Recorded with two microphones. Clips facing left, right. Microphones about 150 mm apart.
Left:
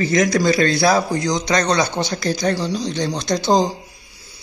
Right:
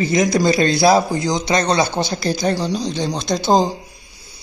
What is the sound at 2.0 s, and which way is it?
Speech, 30° right (ahead or behind).